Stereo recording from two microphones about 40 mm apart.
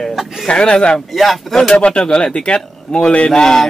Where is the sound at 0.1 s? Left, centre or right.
Centre.